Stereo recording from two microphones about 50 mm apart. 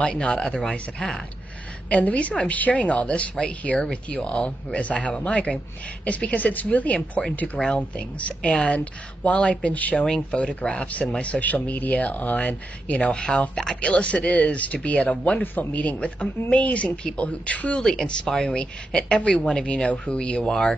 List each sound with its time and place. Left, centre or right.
0.0 s speech: centre
1.9 s speech: left
7.5 s speech: centre
7.9 s speech: left
9.9 s speech: centre; by 13.1 s left
13.1 s speech: centre
13.7 s speech: left
15.4 s speech: left
17.7 s speech: centre